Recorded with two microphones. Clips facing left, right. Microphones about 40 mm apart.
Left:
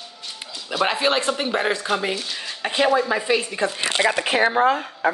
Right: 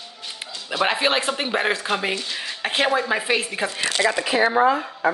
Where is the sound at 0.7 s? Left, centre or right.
Centre.